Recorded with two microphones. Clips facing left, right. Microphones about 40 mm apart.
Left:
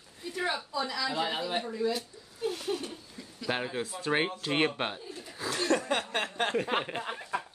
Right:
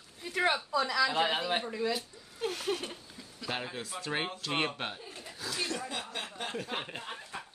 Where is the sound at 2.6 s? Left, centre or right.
Right.